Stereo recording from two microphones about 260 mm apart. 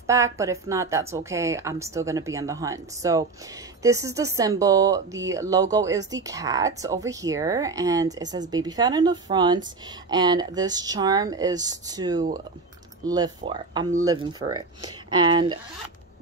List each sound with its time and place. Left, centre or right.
0.0 s a woman's voice: centre